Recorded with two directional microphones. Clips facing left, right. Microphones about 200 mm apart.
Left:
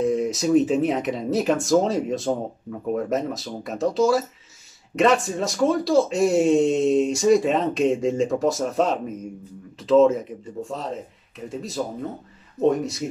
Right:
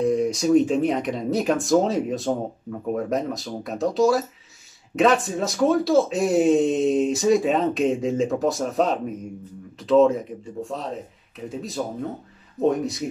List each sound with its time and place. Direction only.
0.0 s speech: centre (ahead or behind)